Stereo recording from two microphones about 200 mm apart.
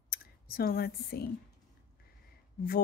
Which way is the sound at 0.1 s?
45° left (ahead or behind).